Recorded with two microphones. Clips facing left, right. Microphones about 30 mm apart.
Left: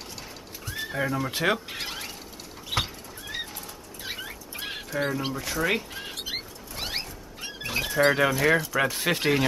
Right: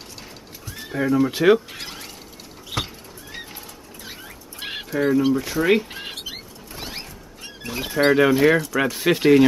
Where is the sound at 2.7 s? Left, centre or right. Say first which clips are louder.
Even; centre.